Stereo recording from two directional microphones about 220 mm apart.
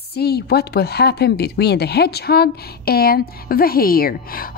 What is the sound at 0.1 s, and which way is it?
Speech, 45° left (ahead or behind).